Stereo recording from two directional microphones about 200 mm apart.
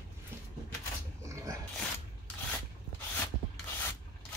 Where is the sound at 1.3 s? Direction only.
15° right (ahead or behind).